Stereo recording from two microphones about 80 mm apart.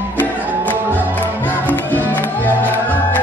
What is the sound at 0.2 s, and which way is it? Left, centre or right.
Music, left.